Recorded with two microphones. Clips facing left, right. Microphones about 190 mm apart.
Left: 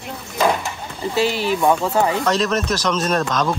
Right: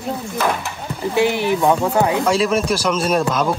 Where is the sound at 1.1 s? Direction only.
15° right (ahead or behind).